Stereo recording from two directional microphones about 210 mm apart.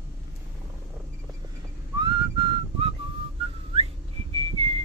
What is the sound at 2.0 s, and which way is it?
Whistling, 20° right (ahead or behind).